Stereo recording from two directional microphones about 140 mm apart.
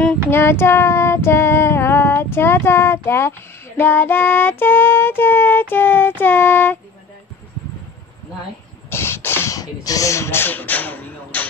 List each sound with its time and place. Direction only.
0.0 s child singing: 10° left (ahead or behind)
8.9 s beatboxing: 15° left (ahead or behind)